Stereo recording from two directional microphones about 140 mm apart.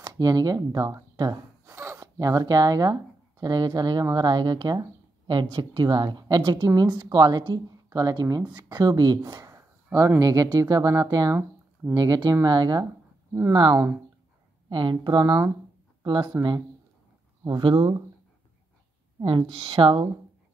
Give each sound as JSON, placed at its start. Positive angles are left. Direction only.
{"t": 0.0, "sound": "speech", "side_deg": -25}
{"t": 17.4, "sound": "speech", "side_deg": -35}
{"t": 19.2, "sound": "speech", "side_deg": -40}